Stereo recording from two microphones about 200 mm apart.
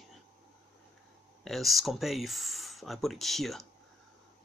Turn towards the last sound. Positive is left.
turn(degrees=0)  # may be behind; listen again after turning